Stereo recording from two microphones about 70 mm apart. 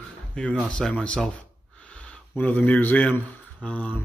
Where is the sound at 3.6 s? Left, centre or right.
Left.